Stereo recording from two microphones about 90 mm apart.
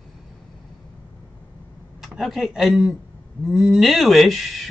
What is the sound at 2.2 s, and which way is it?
Speech, 5° right (ahead or behind).